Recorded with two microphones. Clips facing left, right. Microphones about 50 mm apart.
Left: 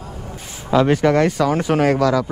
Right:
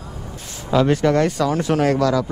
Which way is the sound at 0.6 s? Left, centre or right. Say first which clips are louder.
Left 2 dB; centre.